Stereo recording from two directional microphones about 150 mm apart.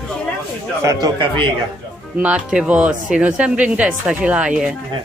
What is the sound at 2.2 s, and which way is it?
A woman's voice, 10° right (ahead or behind).